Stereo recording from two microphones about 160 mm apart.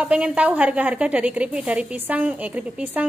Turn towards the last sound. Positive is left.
turn(degrees=-10)  # may be behind; listen again after turning